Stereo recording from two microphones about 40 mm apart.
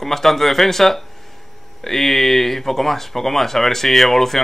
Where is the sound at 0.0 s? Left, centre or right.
Centre.